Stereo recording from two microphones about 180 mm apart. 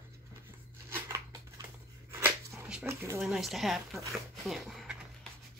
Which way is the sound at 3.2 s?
Centre (ahead or behind).